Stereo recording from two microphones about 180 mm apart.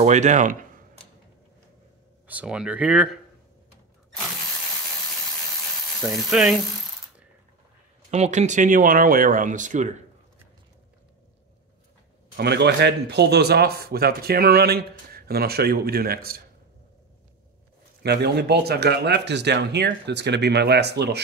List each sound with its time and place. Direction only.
0.0 s speech: 40° right (ahead or behind)
2.2 s speech: 5° right (ahead or behind)
6.0 s speech: 5° right (ahead or behind)
8.1 s speech: 40° right (ahead or behind)
12.4 s speech: 70° right (ahead or behind)
18.0 s speech: 65° right (ahead or behind)